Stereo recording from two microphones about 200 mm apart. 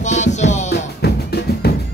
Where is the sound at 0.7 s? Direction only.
55° left (ahead or behind).